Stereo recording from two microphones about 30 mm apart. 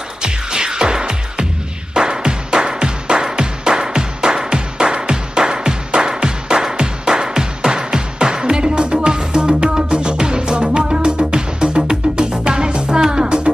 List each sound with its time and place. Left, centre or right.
0.2 s music: right